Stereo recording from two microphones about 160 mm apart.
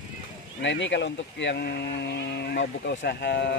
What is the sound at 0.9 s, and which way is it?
Speech, 90° left.